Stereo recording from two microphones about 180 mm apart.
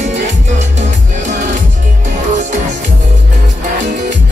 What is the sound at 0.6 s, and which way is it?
Music, 40° right (ahead or behind).